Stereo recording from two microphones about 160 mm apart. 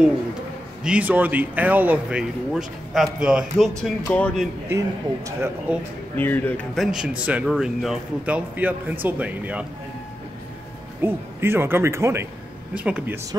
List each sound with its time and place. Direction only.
0.8 s speech: 10° right (ahead or behind)
4.6 s speech: 20° right (ahead or behind)
6.1 s speech: 10° left (ahead or behind); by 9.7 s 10° right (ahead or behind)
11.0 s speech: 15° right (ahead or behind)